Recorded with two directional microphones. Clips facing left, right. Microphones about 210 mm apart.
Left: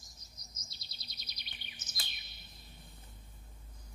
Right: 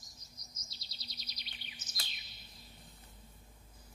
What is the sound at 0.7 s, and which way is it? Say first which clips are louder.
Bird vocalization: right 4 dB; 55° left (ahead or behind).